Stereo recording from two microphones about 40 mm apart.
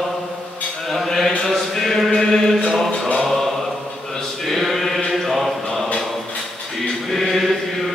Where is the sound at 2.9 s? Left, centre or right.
Left.